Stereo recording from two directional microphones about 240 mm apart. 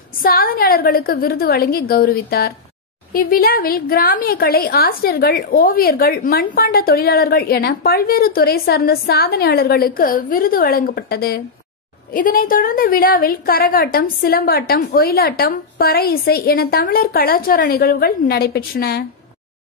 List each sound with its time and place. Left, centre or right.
0.2 s a woman's voice: left